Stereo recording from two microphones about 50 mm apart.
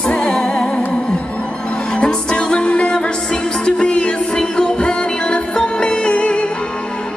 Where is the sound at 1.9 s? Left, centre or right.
Centre.